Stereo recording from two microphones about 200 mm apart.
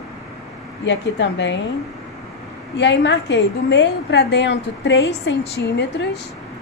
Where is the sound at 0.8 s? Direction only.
65° left (ahead or behind).